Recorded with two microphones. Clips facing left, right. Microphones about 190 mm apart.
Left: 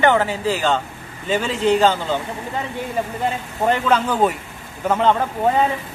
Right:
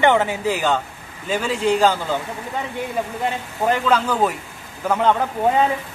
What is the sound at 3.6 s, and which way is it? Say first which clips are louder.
Speech: left 1 dB; 5° left (ahead or behind).